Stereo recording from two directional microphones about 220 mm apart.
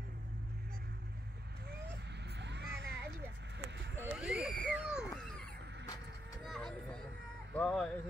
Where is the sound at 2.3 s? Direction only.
50° right (ahead or behind).